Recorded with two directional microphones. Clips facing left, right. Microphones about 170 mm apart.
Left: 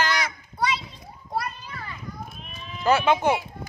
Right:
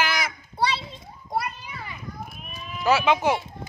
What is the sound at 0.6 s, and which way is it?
Speech, 30° right (ahead or behind).